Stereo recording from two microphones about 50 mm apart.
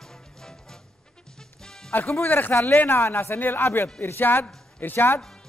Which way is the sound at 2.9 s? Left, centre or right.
Left.